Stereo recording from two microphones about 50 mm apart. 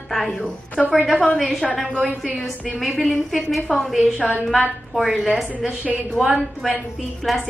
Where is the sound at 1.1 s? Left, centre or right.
Centre.